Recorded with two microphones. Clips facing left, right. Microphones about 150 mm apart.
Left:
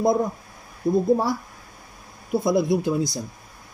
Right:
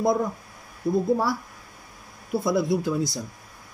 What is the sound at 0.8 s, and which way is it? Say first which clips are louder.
Speech: left 3 dB; 15° left (ahead or behind).